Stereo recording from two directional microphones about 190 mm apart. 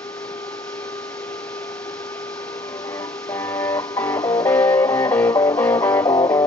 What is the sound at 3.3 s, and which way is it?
Music, 5° left (ahead or behind).